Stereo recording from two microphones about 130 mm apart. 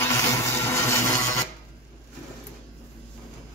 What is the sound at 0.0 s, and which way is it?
Music, 25° left (ahead or behind).